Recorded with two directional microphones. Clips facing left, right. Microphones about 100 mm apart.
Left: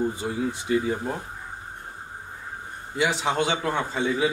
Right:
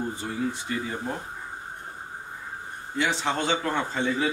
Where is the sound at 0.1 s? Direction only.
15° left (ahead or behind).